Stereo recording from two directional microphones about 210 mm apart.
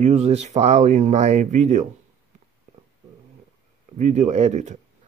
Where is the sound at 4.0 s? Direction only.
35° right (ahead or behind).